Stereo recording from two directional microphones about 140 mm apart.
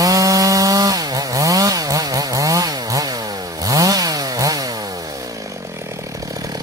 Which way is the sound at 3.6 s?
25° right (ahead or behind).